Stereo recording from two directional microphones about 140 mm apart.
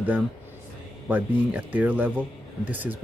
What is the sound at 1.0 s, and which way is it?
Speech, 10° right (ahead or behind).